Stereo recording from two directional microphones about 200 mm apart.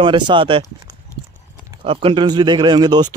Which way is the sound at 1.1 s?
15° left (ahead or behind).